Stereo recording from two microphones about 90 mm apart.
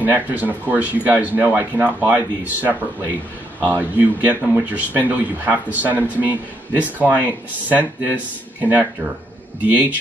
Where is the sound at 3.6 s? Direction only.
20° right (ahead or behind).